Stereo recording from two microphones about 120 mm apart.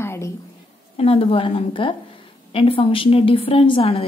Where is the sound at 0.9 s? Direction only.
55° left (ahead or behind).